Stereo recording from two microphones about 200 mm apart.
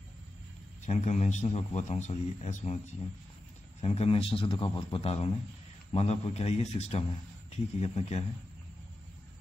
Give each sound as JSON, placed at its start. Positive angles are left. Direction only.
{"t": 0.8, "sound": "a man's voice", "side_deg": 35}
{"t": 3.8, "sound": "a man's voice", "side_deg": 30}